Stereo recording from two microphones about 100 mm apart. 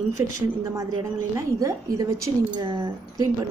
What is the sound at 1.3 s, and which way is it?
A woman's voice, 30° right (ahead or behind).